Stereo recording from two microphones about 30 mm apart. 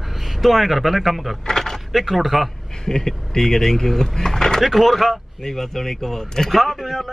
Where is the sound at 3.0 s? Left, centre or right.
Centre.